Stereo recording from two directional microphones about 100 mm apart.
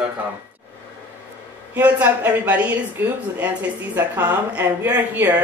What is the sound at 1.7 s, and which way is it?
A woman's voice, 15° right (ahead or behind).